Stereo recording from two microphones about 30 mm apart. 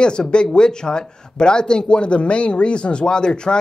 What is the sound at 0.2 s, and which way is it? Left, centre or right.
Speech, centre.